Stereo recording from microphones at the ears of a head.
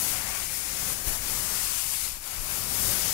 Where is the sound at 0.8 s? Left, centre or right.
Left.